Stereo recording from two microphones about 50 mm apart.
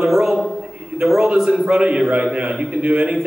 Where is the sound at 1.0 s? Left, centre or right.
Centre.